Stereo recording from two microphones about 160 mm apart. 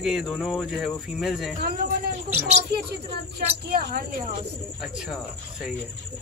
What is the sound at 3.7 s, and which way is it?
Speech, 70° right (ahead or behind).